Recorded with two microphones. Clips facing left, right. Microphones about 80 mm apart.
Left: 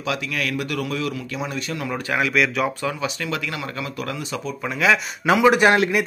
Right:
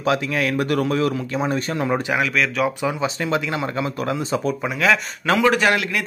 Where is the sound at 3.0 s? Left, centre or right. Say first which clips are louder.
Right 4 dB; right.